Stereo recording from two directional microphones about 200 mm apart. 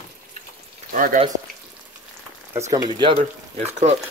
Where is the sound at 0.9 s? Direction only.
40° right (ahead or behind).